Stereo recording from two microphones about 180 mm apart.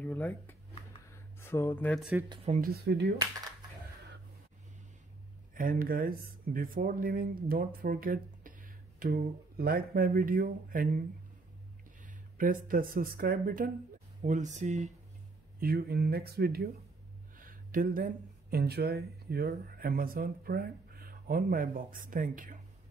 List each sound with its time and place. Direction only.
0.0 s speech: 10° left (ahead or behind)
2.0 s speech: 5° right (ahead or behind)
2.2 s speech: 25° right (ahead or behind)
2.5 s speech: 55° right (ahead or behind)
5.5 s speech: 50° right (ahead or behind)
12.0 s speech: 50° right (ahead or behind)
14.2 s speech: 40° right (ahead or behind)
15.6 s speech: 60° right (ahead or behind)
17.4 s a sound: 50° right (ahead or behind)
18.5 s speech: 60° right (ahead or behind)